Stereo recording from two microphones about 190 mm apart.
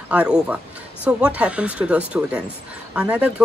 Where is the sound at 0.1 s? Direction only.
5° right (ahead or behind).